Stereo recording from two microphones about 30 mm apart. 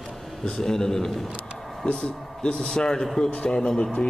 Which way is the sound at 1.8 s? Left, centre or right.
Left.